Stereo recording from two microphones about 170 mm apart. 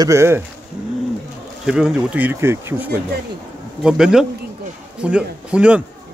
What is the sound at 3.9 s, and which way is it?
Speech, 5° right (ahead or behind).